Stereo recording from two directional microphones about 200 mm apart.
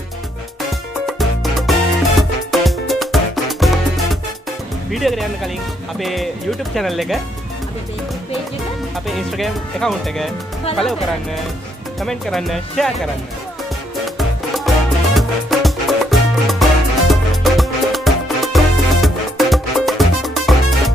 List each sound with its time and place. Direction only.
0.6 s music: centre (ahead or behind)
4.9 s speech: centre (ahead or behind)
9.0 s speech: centre (ahead or behind)
12.0 s speech: centre (ahead or behind)
14.0 s music: centre (ahead or behind)